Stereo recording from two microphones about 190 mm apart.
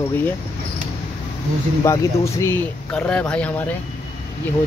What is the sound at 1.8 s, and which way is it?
Speech, 15° left (ahead or behind).